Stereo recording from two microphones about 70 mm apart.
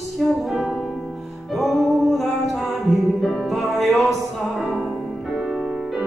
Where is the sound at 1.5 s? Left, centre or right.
Centre.